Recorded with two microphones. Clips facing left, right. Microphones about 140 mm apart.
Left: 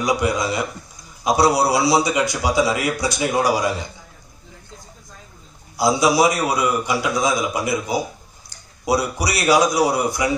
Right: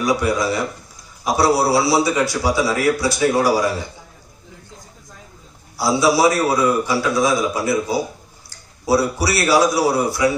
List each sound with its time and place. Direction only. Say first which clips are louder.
0.0 s a man's voice: right 2 dB; 20° left (ahead or behind)
5.8 s a man's voice: even; 15° left (ahead or behind)